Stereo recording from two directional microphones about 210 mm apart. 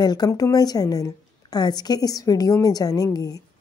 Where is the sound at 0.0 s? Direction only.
20° left (ahead or behind).